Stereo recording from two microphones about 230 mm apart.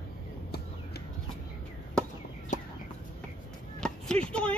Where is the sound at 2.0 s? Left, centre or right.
Centre.